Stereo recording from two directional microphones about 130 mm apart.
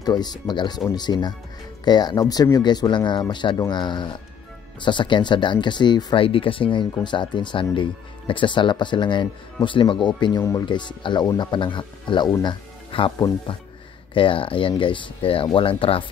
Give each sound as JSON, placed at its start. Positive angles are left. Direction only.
{"t": 0.0, "sound": "speech", "side_deg": 30}
{"t": 12.9, "sound": "speech", "side_deg": 45}
{"t": 14.1, "sound": "speech", "side_deg": 40}